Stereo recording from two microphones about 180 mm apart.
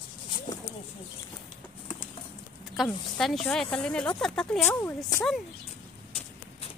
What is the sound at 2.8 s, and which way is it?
Speech, centre (ahead or behind).